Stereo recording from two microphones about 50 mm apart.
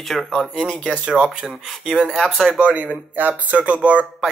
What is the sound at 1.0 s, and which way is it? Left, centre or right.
Speech, right.